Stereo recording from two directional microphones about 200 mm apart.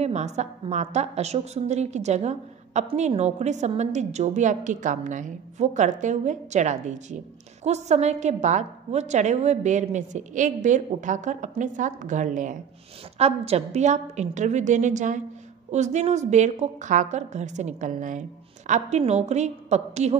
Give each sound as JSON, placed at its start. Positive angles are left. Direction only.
{"t": 0.0, "sound": "a woman's voice", "side_deg": -35}